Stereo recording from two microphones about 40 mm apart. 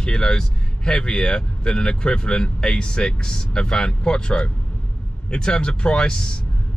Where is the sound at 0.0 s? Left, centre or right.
Centre.